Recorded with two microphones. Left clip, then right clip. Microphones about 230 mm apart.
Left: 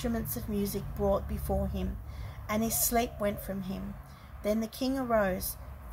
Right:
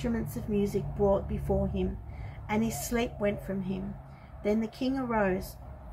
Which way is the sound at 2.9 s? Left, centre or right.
Centre.